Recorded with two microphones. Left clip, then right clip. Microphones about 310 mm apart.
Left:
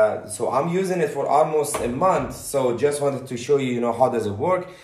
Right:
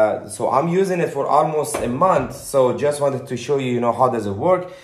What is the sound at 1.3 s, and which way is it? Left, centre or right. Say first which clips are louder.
Speech: right 1 dB; right.